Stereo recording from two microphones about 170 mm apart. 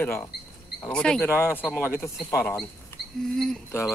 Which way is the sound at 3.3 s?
5° left (ahead or behind).